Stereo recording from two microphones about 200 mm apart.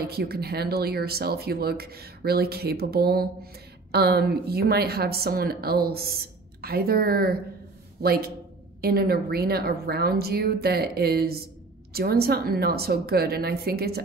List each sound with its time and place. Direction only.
0.0 s speech: 50° right (ahead or behind)